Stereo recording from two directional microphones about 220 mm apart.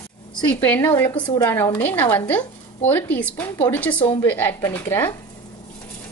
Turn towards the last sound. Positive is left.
turn(degrees=10)  # may be behind; listen again after turning